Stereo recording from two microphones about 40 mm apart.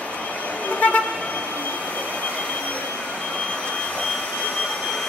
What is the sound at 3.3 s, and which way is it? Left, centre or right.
Jet engine, left.